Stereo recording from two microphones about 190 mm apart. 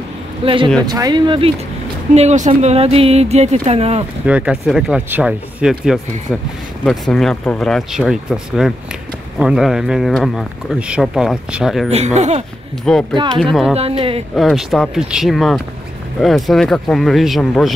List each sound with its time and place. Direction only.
0.4 s speech: 30° right (ahead or behind)
2.1 s speech: 35° right (ahead or behind)
4.3 s speech: 5° right (ahead or behind)
11.9 s speech: 35° right (ahead or behind)
12.9 s speech: 5° left (ahead or behind)
13.7 s speech: 30° right (ahead or behind)
14.3 s speech: centre (ahead or behind)